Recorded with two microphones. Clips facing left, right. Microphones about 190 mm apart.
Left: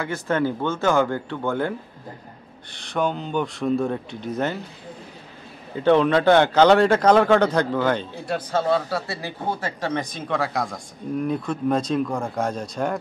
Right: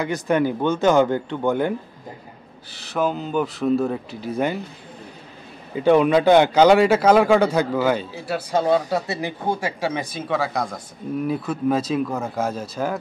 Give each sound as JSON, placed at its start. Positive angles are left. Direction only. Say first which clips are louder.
{"t": 0.0, "sound": "a man's voice", "louder": "right 3 dB", "side_deg": -15}
{"t": 2.7, "sound": "speech", "louder": "right 1 dB", "side_deg": -5}
{"t": 5.8, "sound": "a man's voice", "louder": "right 2 dB", "side_deg": -10}